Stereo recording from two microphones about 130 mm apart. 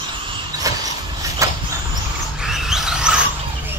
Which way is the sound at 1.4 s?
25° right (ahead or behind).